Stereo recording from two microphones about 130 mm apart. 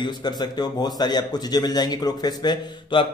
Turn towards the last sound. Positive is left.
turn(degrees=30)  # may be behind; listen again after turning